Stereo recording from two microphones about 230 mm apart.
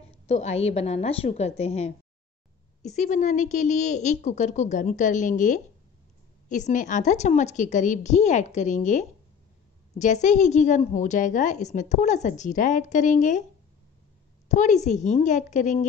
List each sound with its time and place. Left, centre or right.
0.3 s a woman's voice: left
14.5 s a woman's voice: left